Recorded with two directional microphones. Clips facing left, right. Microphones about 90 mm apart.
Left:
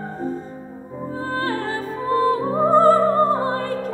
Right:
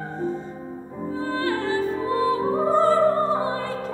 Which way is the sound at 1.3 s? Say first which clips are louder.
Right 1 dB; 40° left (ahead or behind).